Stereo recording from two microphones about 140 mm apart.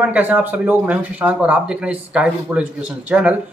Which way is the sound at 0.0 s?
10° right (ahead or behind).